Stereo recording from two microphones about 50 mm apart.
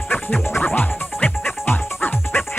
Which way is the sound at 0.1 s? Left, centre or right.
Left.